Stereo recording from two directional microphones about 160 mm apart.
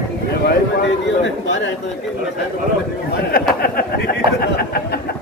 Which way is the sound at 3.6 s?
70° left (ahead or behind).